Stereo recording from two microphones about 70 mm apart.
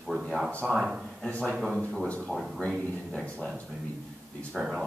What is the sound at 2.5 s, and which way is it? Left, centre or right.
Speech, centre.